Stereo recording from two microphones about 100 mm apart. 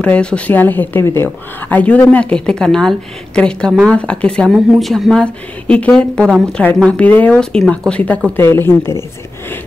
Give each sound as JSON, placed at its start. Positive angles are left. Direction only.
{"t": 0.0, "sound": "speech", "side_deg": 10}
{"t": 8.4, "sound": "speech", "side_deg": 25}